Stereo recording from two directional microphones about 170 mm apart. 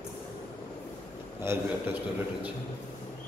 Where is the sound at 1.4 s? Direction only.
15° right (ahead or behind).